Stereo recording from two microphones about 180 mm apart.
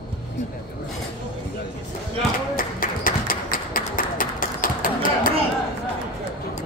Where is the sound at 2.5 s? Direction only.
50° left (ahead or behind).